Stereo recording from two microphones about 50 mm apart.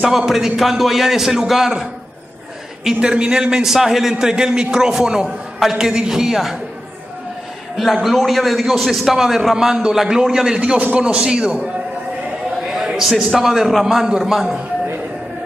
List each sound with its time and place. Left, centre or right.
0.0 s a man's voice: centre
3.6 s a man's voice: centre
7.7 s a man's voice: centre
10.6 s a man's voice: right
12.6 s a sound: centre
13.4 s a man's voice: centre